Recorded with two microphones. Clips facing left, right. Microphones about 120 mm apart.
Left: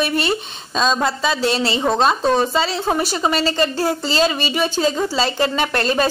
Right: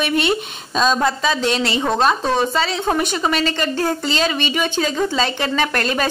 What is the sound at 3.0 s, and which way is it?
Speech, 35° left (ahead or behind).